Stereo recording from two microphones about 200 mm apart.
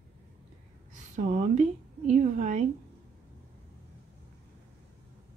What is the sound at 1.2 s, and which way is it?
Speech, 40° right (ahead or behind).